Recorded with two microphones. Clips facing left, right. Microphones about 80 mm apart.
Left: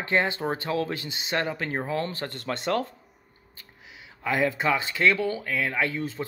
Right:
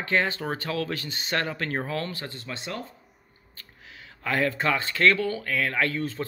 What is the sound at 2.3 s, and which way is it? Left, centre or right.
Speech, left.